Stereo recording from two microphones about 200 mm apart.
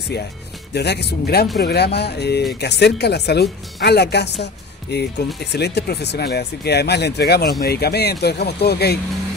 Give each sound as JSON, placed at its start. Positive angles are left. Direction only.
{"t": 0.7, "sound": "speech", "side_deg": 55}